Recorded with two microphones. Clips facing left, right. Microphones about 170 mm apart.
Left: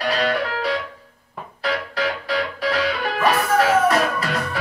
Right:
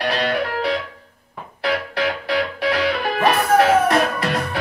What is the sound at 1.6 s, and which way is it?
Music, 60° right (ahead or behind).